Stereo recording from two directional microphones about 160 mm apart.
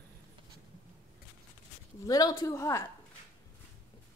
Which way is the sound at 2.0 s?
25° left (ahead or behind).